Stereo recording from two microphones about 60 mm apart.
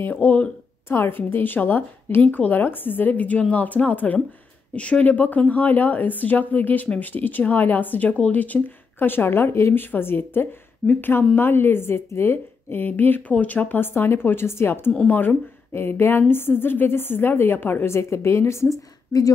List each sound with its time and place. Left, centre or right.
0.0 s a woman's voice: left
15.0 s speech: left
19.1 s a woman's voice: left